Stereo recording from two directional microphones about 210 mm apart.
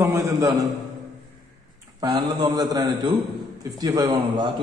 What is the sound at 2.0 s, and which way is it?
A man's voice, 20° right (ahead or behind).